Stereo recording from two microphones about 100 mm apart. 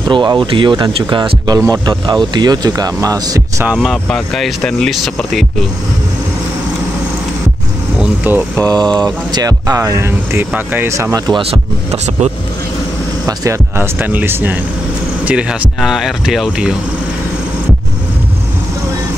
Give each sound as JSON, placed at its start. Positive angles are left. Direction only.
{"t": 0.1, "sound": "speech", "side_deg": -50}
{"t": 1.5, "sound": "speech", "side_deg": -40}
{"t": 3.6, "sound": "speech", "side_deg": -5}
{"t": 8.0, "sound": "speech", "side_deg": -15}
{"t": 8.7, "sound": "speech", "side_deg": -45}
{"t": 10.9, "sound": "speech", "side_deg": -30}
{"t": 13.4, "sound": "speech", "side_deg": -25}
{"t": 15.8, "sound": "speech", "side_deg": -5}